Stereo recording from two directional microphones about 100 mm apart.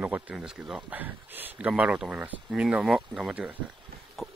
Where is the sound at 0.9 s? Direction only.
20° right (ahead or behind).